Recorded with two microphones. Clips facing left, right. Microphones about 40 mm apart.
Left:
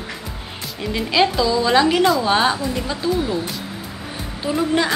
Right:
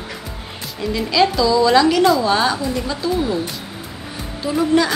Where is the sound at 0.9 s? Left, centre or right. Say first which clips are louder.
Right 1 dB; left.